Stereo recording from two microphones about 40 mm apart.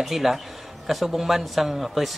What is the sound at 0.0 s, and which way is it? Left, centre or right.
A man's voice, centre.